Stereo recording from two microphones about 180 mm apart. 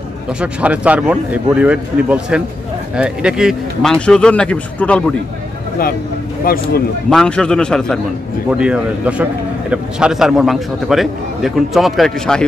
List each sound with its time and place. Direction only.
0.4 s a man's voice: 5° right (ahead or behind)
6.4 s speech: 55° left (ahead or behind)
7.1 s a man's voice: 5° left (ahead or behind)